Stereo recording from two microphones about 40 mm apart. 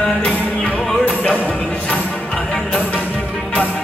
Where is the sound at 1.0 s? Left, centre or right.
Left.